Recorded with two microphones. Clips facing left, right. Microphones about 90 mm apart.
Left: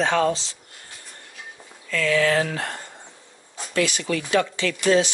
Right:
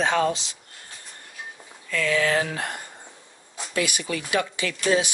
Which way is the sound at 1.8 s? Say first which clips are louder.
Left 2 dB; 20° right (ahead or behind).